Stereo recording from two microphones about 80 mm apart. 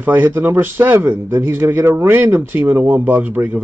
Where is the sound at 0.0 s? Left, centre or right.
Right.